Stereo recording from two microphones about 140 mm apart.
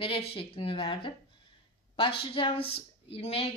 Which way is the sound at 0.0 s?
40° left (ahead or behind).